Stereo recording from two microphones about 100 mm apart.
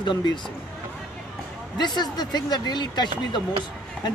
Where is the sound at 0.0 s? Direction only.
50° left (ahead or behind).